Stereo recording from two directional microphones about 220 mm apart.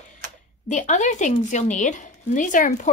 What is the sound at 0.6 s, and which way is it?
A woman's voice, 35° left (ahead or behind).